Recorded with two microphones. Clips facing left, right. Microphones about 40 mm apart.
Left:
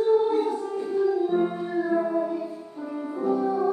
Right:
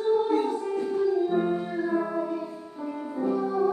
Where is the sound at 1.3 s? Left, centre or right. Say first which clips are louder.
Left 1 dB; centre.